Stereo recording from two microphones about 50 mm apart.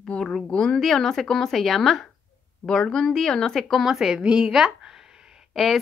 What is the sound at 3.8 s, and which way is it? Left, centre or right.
A woman's voice, centre.